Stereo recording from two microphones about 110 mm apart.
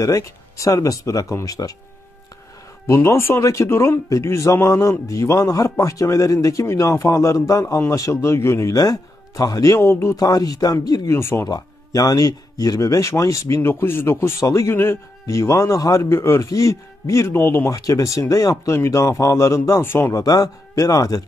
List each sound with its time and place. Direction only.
0.0 s speech: 30° left (ahead or behind)
2.9 s speech: 25° left (ahead or behind)
10.1 s speech: 35° left (ahead or behind)
11.1 s speech: 20° left (ahead or behind)
11.4 s speech: 35° left (ahead or behind)